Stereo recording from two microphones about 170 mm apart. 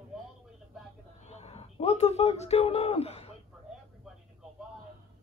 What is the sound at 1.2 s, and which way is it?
A man's voice, 40° left (ahead or behind).